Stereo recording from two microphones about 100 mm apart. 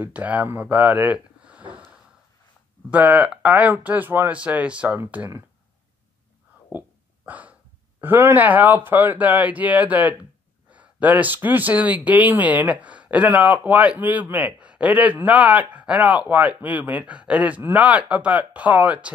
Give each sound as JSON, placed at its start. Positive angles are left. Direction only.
{"t": 0.0, "sound": "speech", "side_deg": -15}
{"t": 6.7, "sound": "speech", "side_deg": -20}
{"t": 7.2, "sound": "dog", "side_deg": -15}
{"t": 8.0, "sound": "speech", "side_deg": -20}